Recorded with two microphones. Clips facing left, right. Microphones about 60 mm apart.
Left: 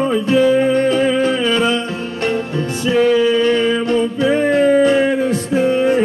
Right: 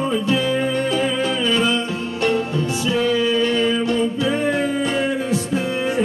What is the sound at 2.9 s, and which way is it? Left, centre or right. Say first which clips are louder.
Music: left 7 dB; left.